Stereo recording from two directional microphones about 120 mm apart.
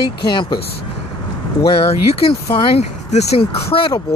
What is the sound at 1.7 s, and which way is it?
Speech, 55° left (ahead or behind).